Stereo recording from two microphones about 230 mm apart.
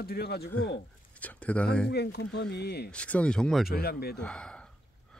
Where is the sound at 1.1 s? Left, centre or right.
Centre.